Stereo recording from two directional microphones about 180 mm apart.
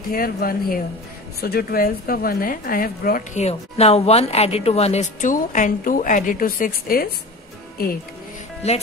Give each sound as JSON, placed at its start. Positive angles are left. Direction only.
{"t": 0.1, "sound": "a woman's voice", "side_deg": 55}
{"t": 8.6, "sound": "speech", "side_deg": 35}